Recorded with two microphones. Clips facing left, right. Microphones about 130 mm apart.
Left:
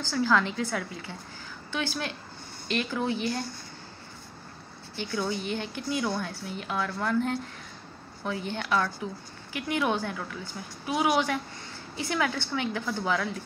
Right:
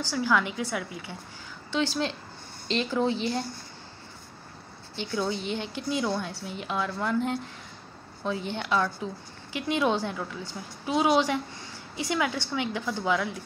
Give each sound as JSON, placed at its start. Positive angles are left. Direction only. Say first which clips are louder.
{"t": 0.1, "sound": "a woman's voice", "louder": "left 1 dB", "side_deg": -15}
{"t": 1.7, "sound": "a woman's voice", "louder": "right 5 dB", "side_deg": -25}
{"t": 4.9, "sound": "a woman's voice", "louder": "right 1 dB", "side_deg": -25}